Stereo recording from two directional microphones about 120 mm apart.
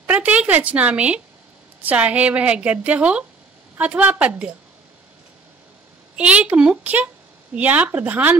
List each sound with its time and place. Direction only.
0.0 s a woman's voice: 10° right (ahead or behind)
6.1 s a woman's voice: 10° right (ahead or behind)